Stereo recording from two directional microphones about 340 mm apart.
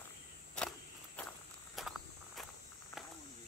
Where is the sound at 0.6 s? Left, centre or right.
Centre.